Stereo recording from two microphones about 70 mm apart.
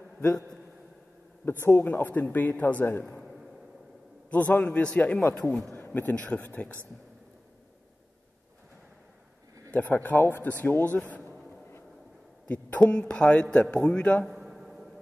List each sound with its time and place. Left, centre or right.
1.4 s a man's voice: left
3.2 s a sound: centre
4.3 s a man's voice: centre
5.7 s a man's voice: left
9.7 s a man's voice: left
12.4 s speech: left
14.2 s a sound: centre